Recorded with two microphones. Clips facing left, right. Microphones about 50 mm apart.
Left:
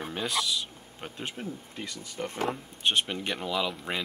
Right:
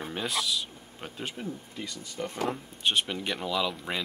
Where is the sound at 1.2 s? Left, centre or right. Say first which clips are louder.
Right 1 dB; left.